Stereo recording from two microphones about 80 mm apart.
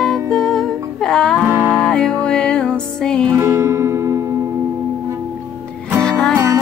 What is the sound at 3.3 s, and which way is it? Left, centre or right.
Music, right.